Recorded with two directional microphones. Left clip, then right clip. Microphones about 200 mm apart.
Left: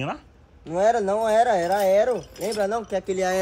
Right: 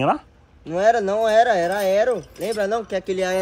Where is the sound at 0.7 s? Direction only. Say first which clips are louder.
Right 3 dB; 40° right (ahead or behind).